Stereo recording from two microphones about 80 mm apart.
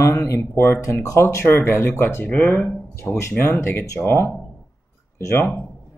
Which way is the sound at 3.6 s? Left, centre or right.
Left.